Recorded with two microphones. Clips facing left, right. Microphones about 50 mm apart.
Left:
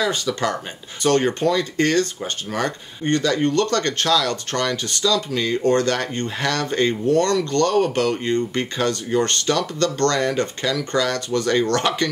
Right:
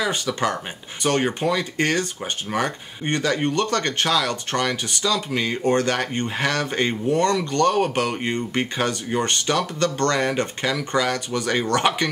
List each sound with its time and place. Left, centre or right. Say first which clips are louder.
0.0 s speech: left 1 dB; centre